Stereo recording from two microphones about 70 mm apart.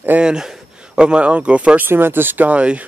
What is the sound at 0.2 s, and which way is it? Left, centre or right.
Speech, centre.